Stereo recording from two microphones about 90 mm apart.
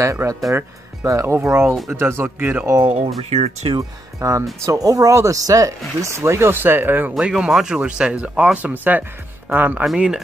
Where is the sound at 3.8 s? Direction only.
35° right (ahead or behind).